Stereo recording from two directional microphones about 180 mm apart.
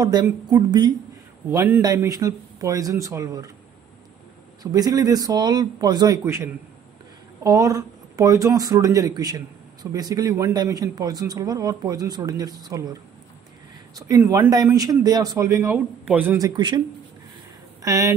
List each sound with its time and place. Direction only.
0.0 s a man's voice: 20° right (ahead or behind)
4.6 s a man's voice: 20° right (ahead or behind)
13.9 s a man's voice: 20° right (ahead or behind)
17.8 s speech: 20° right (ahead or behind)